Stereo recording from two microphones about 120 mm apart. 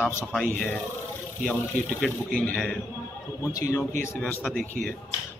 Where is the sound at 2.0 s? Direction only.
10° left (ahead or behind).